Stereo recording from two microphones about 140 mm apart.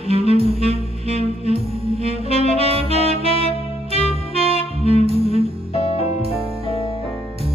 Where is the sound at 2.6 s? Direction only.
45° right (ahead or behind).